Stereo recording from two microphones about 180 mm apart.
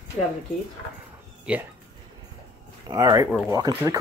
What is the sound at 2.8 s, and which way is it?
Speech, 20° right (ahead or behind).